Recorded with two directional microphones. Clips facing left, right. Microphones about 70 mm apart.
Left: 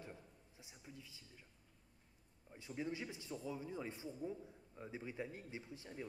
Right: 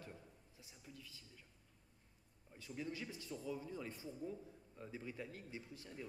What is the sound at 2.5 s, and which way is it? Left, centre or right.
Speech, left.